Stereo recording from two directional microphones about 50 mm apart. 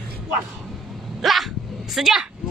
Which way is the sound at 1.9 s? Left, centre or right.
Centre.